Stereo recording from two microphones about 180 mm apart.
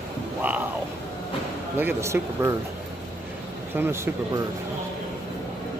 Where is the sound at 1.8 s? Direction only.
15° right (ahead or behind).